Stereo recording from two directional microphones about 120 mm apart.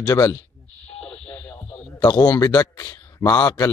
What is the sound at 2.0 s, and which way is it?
A man's voice, 30° left (ahead or behind).